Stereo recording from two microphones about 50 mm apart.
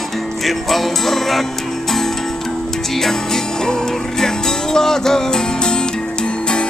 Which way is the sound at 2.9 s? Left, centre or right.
Centre.